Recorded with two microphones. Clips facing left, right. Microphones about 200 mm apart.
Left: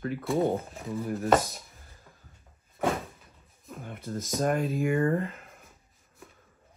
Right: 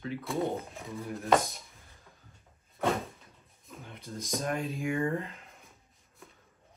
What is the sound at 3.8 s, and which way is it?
Speech, 50° left (ahead or behind).